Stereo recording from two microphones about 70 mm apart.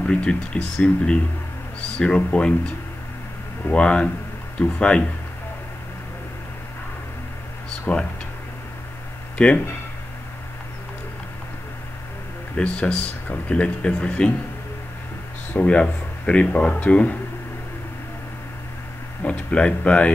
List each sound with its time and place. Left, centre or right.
0.0 s speech: centre
7.9 s speech: left
9.4 s speech: centre
12.5 s speech: centre
15.5 s speech: centre
19.2 s speech: centre